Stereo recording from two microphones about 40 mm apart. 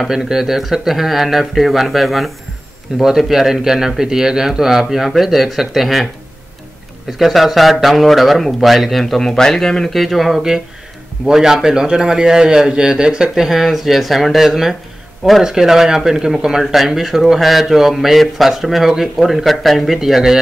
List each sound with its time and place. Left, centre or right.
0.1 s speech: centre
7.2 s speech: centre
9.8 s speech: centre
11.3 s speech: centre
13.3 s speech: centre
20.0 s speech: centre